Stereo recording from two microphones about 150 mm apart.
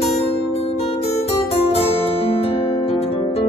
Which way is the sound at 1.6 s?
40° left (ahead or behind).